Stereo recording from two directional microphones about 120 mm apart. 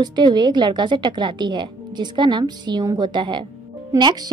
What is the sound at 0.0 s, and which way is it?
A woman's voice, 35° right (ahead or behind).